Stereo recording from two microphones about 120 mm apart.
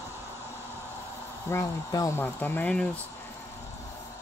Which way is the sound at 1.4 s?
25° left (ahead or behind).